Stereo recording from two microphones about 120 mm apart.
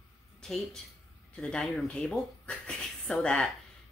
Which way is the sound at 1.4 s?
5° left (ahead or behind).